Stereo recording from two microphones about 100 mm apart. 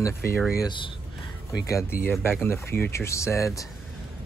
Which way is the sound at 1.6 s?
30° left (ahead or behind).